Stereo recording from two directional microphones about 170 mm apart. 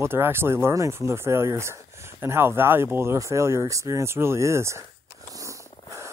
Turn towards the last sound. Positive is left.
turn(degrees=-20)  # may be behind; listen again after turning